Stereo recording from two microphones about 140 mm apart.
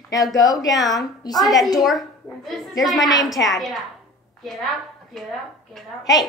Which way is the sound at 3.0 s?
25° left (ahead or behind).